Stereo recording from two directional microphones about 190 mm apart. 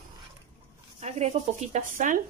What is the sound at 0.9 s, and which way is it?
Speech, 35° right (ahead or behind).